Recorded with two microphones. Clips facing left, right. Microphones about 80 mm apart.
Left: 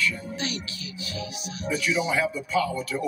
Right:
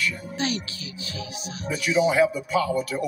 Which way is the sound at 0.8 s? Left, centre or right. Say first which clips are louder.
Left 1 dB; right.